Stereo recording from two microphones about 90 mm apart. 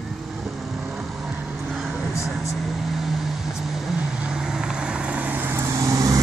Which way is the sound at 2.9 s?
5° right (ahead or behind).